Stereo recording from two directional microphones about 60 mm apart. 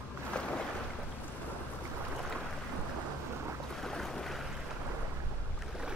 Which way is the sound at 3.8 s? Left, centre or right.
Centre.